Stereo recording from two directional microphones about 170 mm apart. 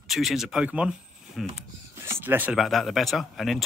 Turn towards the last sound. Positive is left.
turn(degrees=0)  # may be behind; listen again after turning